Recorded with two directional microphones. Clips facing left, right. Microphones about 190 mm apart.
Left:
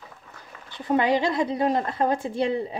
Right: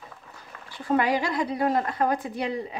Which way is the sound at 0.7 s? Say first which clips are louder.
Left 2 dB; 20° left (ahead or behind).